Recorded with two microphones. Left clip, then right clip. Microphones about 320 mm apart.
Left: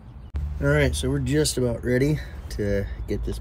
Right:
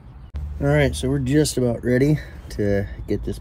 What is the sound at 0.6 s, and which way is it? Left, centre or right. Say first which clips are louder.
Speech: right 2 dB; right.